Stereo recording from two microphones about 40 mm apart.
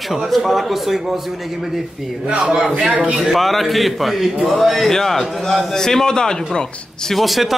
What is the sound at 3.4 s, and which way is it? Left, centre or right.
A man's voice, centre.